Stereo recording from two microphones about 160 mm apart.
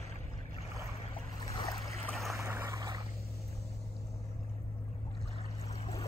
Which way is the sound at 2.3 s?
15° right (ahead or behind).